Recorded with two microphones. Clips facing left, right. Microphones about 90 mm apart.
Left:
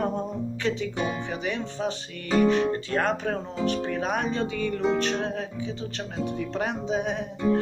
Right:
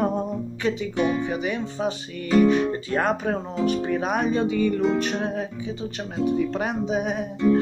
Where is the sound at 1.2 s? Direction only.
10° right (ahead or behind).